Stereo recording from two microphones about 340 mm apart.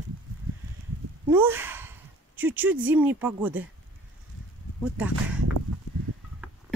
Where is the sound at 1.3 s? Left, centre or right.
Centre.